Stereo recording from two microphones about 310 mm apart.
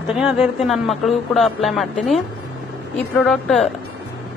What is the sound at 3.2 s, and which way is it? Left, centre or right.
Speech, centre.